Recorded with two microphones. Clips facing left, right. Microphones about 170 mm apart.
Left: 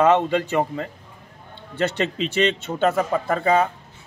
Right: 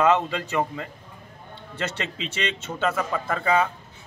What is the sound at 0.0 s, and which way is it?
Speech, 35° left (ahead or behind).